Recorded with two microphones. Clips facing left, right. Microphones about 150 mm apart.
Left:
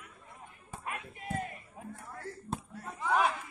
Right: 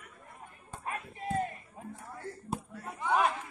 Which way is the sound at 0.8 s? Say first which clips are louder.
Right 4 dB; 35° right (ahead or behind).